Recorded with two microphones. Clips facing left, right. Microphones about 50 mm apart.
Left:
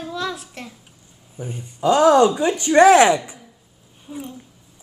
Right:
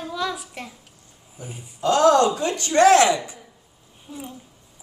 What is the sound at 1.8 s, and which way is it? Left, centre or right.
Speech, centre.